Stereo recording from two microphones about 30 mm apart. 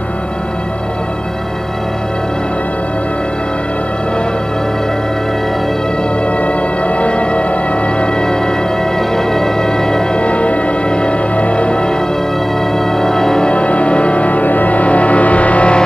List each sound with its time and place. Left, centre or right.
6.4 s music: left
8.0 s music: left
10.1 s music: left
12.7 s music: centre
13.5 s music: left